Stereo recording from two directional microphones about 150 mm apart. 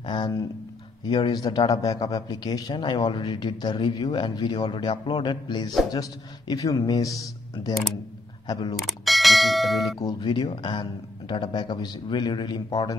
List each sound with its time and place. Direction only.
0.0 s a man's voice: 30° left (ahead or behind)
8.5 s a man's voice: 30° left (ahead or behind)
8.7 s bell: centre (ahead or behind)
9.9 s speech: 30° left (ahead or behind)